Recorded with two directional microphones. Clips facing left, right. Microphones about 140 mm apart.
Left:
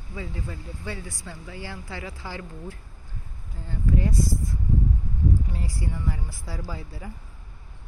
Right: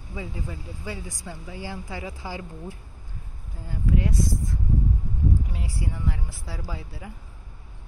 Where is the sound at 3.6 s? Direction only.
Centre (ahead or behind).